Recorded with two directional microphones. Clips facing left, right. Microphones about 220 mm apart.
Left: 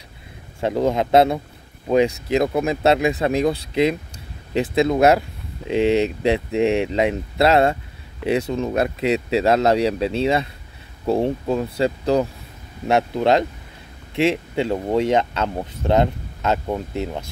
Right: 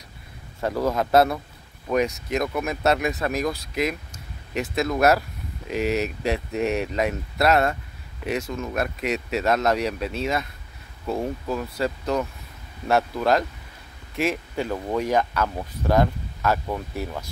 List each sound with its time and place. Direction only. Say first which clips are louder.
0.6 s speech: left 4 dB; 25° left (ahead or behind)